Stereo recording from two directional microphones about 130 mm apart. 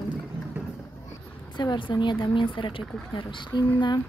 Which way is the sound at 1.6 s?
35° left (ahead or behind).